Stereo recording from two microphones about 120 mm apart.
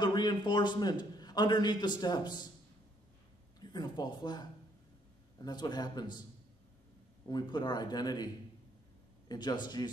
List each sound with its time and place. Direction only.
0.0 s a man's voice: 35° left (ahead or behind)
3.6 s a man's voice: 35° left (ahead or behind)
7.2 s a man's voice: 35° left (ahead or behind)
9.3 s a man's voice: 35° left (ahead or behind)